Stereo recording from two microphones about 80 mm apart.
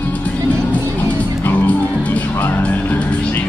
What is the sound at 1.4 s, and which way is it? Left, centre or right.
Music, left.